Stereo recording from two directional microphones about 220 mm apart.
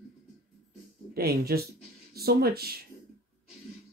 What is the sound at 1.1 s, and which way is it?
Speech, 45° right (ahead or behind).